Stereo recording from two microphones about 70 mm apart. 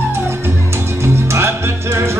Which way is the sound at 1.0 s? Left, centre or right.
Right.